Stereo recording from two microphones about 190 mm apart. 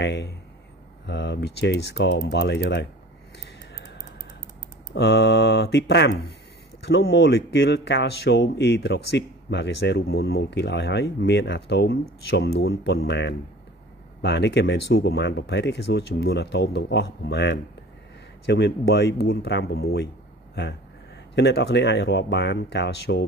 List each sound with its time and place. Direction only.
0.0 s speech: 65° left (ahead or behind)
4.9 s speech: 60° left (ahead or behind)
21.4 s speech: 60° left (ahead or behind)